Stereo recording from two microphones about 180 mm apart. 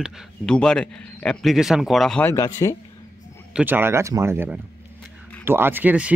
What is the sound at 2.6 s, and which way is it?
Speech, 20° left (ahead or behind).